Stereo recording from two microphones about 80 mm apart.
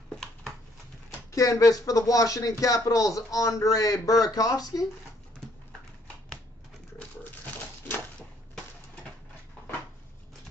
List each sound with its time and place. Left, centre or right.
1.3 s speech: left